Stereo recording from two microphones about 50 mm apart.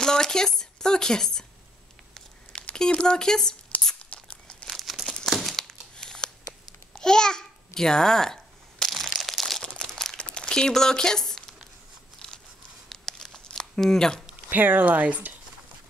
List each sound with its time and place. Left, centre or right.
0.0 s speech: centre
2.7 s speech: centre
3.8 s tearing: left
4.6 s crumpling: centre
5.9 s a sound: centre
7.0 s babbling: centre
8.9 s crushing: centre
9.8 s crumpling: centre
12.9 s crumpling: centre
13.6 s speech: centre
14.5 s speech: right